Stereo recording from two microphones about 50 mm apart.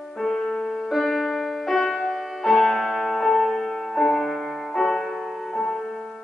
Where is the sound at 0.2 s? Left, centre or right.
Centre.